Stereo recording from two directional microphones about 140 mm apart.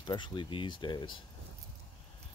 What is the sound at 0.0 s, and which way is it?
Speech, 35° left (ahead or behind).